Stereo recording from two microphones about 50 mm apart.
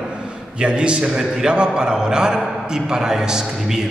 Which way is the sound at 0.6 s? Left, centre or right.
Right.